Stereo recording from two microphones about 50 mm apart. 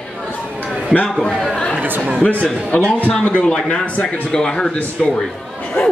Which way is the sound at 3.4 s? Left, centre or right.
Centre.